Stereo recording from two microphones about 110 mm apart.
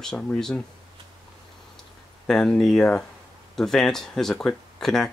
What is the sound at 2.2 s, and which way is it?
Speech, 10° left (ahead or behind).